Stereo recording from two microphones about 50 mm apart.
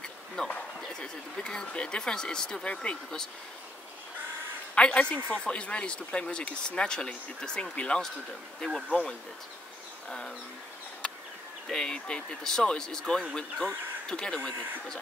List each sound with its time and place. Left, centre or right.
0.4 s speech: centre
4.7 s speech: left
8.5 s speech: centre
10.0 s bird: centre
11.7 s speech: centre